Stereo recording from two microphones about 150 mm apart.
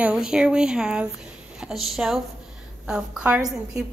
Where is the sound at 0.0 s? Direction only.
5° right (ahead or behind).